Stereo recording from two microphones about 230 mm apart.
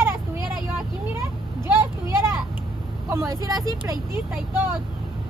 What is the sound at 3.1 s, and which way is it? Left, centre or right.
Speech, centre.